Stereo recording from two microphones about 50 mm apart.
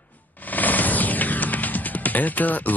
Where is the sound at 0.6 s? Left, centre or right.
Left.